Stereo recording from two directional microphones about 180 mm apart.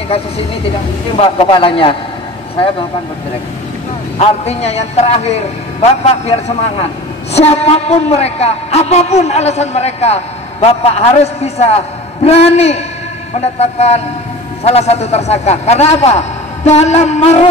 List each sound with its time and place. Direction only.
1.1 s a man's voice: 30° left (ahead or behind)
4.2 s a man's voice: 35° left (ahead or behind)